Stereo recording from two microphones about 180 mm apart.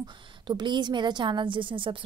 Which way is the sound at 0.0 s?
25° right (ahead or behind).